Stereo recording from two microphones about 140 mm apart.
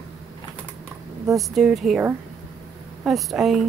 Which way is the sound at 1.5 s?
Centre (ahead or behind).